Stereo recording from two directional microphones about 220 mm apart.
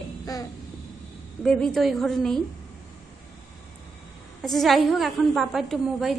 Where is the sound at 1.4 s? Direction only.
5° left (ahead or behind).